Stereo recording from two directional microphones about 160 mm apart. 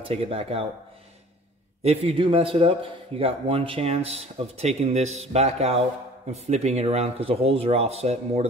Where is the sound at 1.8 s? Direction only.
40° right (ahead or behind).